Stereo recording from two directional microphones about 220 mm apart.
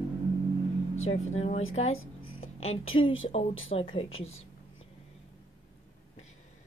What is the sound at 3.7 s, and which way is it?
Speech, 25° left (ahead or behind).